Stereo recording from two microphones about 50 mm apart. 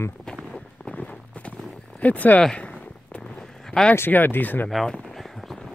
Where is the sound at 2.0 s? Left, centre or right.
Left.